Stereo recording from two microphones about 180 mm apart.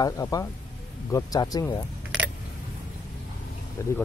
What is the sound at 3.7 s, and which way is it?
Speech, 15° left (ahead or behind).